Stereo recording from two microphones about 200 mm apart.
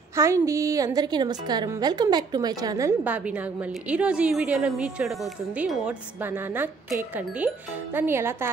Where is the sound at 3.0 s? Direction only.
5° right (ahead or behind).